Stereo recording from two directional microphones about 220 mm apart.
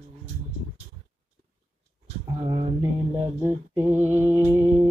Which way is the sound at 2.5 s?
20° right (ahead or behind).